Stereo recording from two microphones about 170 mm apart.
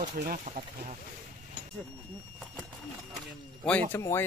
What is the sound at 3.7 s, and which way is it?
Speech, 10° left (ahead or behind).